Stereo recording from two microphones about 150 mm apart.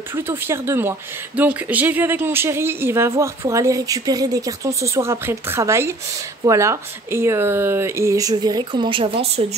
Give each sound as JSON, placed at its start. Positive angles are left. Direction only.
{"t": 0.1, "sound": "speech", "side_deg": -15}